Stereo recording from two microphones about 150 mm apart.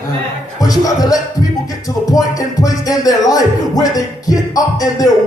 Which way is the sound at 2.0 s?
25° left (ahead or behind).